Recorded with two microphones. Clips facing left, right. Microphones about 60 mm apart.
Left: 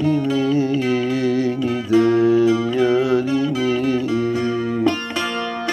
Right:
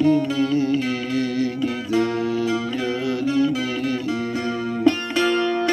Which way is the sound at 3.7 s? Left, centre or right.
Left.